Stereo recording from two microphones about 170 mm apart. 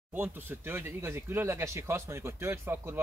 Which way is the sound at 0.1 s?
10° right (ahead or behind).